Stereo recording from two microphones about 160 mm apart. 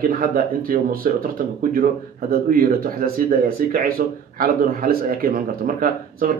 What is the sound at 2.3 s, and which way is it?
A man's voice, 65° right (ahead or behind).